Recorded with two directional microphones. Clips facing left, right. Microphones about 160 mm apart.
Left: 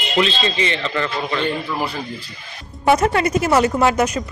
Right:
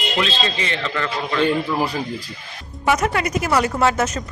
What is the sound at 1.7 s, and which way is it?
Speech, 10° right (ahead or behind).